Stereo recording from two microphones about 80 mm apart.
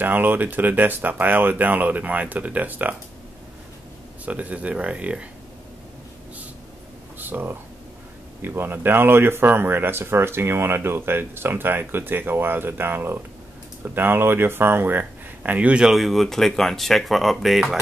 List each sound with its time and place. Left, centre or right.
0.0 s speech: right
4.3 s speech: centre
7.2 s speech: right
15.8 s speech: centre